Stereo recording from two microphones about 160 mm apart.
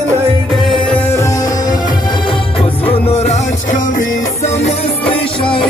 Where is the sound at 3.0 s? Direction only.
40° left (ahead or behind).